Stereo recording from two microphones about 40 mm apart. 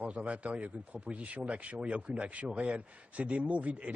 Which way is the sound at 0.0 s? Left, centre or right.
Right.